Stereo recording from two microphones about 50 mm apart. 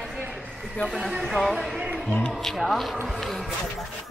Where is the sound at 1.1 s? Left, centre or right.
Centre.